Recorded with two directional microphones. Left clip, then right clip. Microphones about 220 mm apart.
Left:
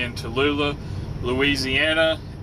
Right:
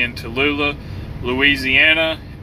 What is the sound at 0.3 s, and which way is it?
Speech, 20° left (ahead or behind).